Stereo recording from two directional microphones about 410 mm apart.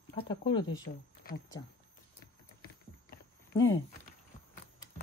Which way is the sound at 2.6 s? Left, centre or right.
Left.